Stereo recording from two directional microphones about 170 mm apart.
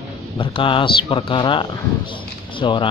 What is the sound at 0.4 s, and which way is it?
Speech, 30° left (ahead or behind).